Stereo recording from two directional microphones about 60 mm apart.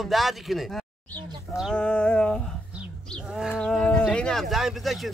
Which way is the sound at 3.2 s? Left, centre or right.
Centre.